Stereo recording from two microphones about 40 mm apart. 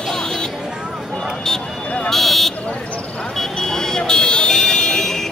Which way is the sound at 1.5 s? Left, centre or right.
Centre.